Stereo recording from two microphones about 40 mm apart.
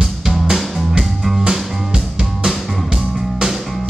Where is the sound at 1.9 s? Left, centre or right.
Right.